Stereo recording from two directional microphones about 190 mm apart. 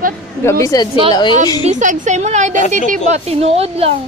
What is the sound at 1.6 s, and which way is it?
A woman's voice, 40° right (ahead or behind).